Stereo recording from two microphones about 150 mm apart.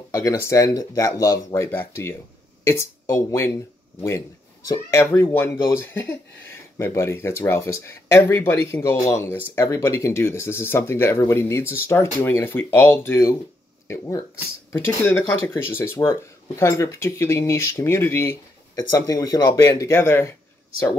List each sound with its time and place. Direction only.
0.1 s speech: 20° left (ahead or behind)
4.6 s speech: 20° left (ahead or behind)